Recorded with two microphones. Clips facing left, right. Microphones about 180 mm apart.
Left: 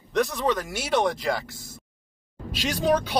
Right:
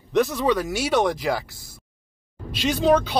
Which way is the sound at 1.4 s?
50° left (ahead or behind).